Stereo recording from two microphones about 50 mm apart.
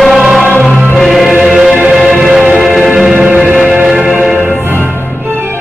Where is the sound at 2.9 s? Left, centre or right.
Centre.